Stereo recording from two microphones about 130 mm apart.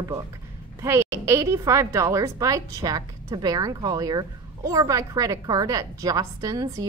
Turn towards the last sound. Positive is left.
turn(degrees=-25)  # may be behind; listen again after turning